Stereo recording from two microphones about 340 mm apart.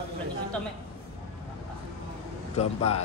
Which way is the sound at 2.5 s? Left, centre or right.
Centre.